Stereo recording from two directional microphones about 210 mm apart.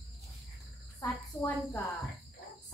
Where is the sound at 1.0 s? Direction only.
Centre (ahead or behind).